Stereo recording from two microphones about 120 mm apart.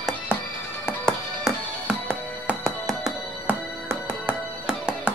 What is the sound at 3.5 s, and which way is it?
Music, 15° right (ahead or behind).